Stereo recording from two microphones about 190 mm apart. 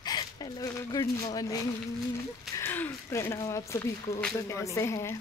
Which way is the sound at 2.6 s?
10° left (ahead or behind).